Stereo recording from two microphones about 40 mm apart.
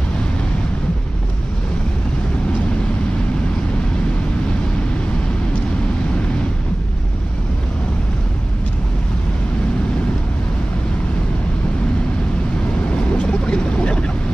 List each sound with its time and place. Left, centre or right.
12.9 s boat: left